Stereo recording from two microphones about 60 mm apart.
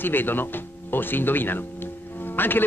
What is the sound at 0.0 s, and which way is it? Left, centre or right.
Speech, left.